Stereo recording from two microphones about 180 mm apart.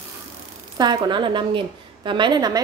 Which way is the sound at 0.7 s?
25° right (ahead or behind).